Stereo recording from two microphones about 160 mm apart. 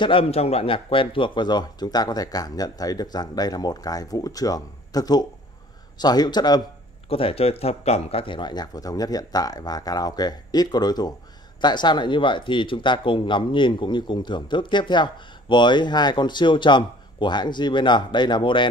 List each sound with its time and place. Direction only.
0.0 s speech: 35° left (ahead or behind)
7.1 s speech: 35° left (ahead or behind)